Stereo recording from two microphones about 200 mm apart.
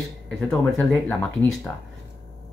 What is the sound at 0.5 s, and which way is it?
Speech, 5° left (ahead or behind).